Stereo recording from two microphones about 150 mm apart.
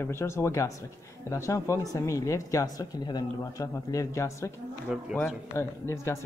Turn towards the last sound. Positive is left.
turn(degrees=20)  # may be behind; listen again after turning